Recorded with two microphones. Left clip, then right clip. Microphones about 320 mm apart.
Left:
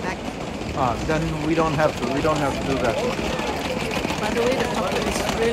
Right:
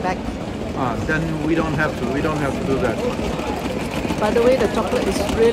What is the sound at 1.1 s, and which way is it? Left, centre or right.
Speech, centre.